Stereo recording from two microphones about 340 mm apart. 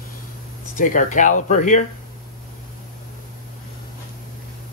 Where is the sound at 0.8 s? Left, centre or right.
Left.